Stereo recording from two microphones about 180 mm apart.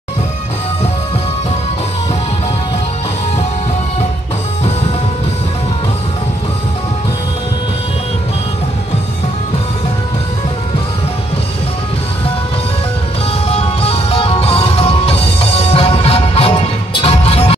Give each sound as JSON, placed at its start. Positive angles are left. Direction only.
{"t": 13.5, "sound": "music", "side_deg": 30}